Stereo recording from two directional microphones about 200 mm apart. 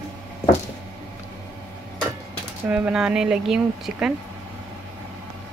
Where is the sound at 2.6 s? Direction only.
5° right (ahead or behind).